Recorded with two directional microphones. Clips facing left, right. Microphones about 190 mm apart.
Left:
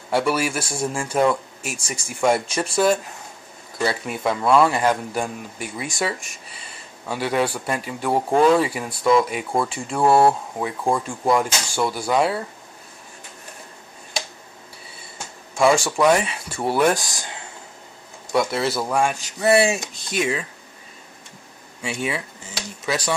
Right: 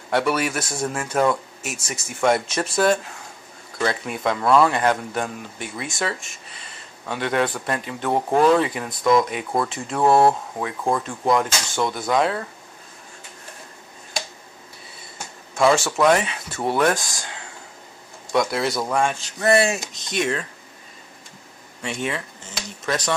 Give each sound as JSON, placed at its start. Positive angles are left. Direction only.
{"t": 0.1, "sound": "speech", "side_deg": 5}
{"t": 0.6, "sound": "speech", "side_deg": 30}
{"t": 1.0, "sound": "a man's voice", "side_deg": 10}
{"t": 1.6, "sound": "speech", "side_deg": 30}
{"t": 2.0, "sound": "a man's voice", "side_deg": 10}
{"t": 3.8, "sound": "a man's voice", "side_deg": 5}
{"t": 15.5, "sound": "speech", "side_deg": 10}
{"t": 18.3, "sound": "a man's voice", "side_deg": 5}
{"t": 21.8, "sound": "a man's voice", "side_deg": 10}